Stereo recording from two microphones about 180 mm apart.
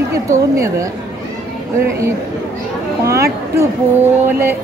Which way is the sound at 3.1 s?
15° right (ahead or behind).